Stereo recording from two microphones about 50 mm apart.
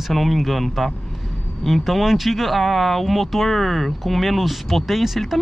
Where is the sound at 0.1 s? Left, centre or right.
Centre.